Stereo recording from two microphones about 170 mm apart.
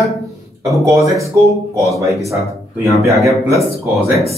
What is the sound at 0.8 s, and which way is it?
Speech, 20° right (ahead or behind).